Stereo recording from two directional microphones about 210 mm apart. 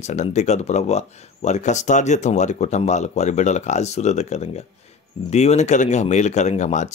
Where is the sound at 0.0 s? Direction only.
35° left (ahead or behind).